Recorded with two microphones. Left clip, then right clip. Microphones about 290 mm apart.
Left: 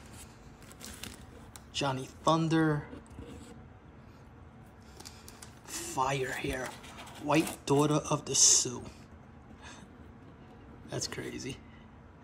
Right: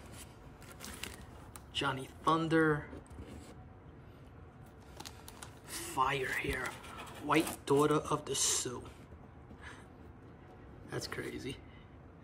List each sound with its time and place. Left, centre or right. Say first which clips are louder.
1.7 s speech: left 2 dB; centre
4.9 s music: right 1 dB; right
5.7 s speech: left 1 dB; centre
10.9 s speech: left 3 dB; centre